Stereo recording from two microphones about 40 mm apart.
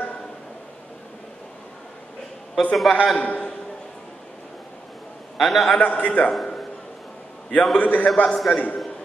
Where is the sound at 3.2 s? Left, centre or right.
Left.